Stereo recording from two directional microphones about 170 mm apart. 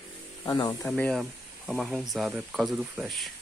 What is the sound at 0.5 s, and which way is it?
Speech, 20° left (ahead or behind).